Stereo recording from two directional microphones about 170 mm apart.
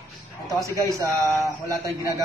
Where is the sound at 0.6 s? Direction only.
20° right (ahead or behind).